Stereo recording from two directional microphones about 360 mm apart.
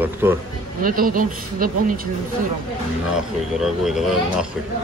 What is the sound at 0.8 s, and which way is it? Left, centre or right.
Speech, right.